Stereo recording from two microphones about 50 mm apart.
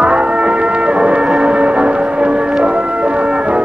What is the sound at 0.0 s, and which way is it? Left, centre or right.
Music, right.